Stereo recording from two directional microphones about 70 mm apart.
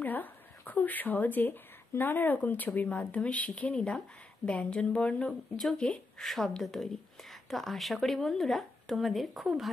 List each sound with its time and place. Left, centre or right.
0.0 s speech: left; by 9.5 s centre